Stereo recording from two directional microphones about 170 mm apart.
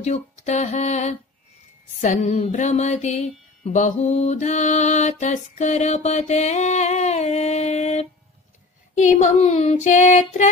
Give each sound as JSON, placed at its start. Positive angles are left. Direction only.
{"t": 0.0, "sound": "mantra", "side_deg": 40}